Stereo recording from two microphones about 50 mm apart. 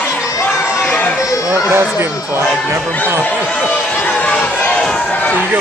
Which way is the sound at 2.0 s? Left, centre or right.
Right.